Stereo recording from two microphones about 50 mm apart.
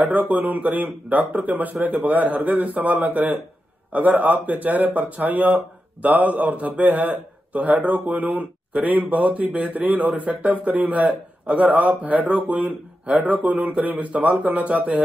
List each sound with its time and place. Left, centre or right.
0.0 s a man's voice: right
9.7 s a man's voice: right
13.4 s speech: right